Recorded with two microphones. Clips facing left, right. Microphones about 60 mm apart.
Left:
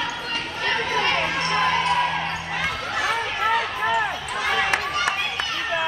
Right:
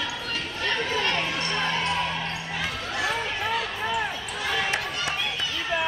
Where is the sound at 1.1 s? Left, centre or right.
Left.